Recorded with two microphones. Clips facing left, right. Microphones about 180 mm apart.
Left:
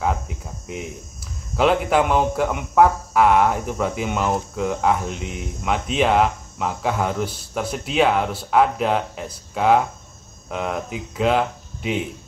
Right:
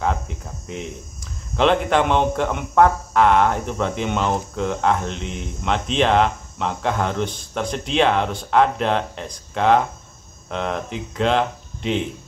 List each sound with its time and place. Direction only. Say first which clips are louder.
0.0 s speech: even; 5° left (ahead or behind)